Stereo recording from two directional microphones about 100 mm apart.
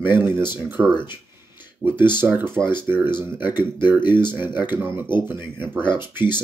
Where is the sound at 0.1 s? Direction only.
20° right (ahead or behind).